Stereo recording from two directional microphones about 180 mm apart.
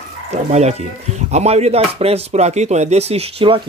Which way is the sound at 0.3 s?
40° right (ahead or behind).